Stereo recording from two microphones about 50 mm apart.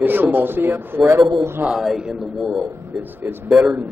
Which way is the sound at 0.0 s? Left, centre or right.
Right.